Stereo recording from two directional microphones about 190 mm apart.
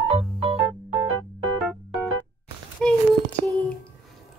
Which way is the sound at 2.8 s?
Centre (ahead or behind).